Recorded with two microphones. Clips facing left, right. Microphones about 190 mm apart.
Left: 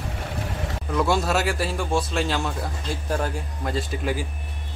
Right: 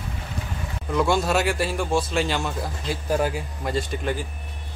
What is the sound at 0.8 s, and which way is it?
A man's voice, centre (ahead or behind).